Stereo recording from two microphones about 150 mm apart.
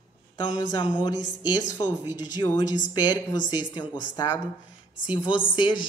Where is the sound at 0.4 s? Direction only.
30° left (ahead or behind).